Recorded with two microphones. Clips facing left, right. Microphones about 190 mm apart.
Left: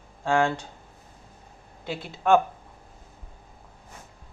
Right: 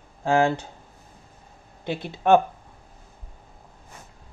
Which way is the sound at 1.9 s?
20° right (ahead or behind).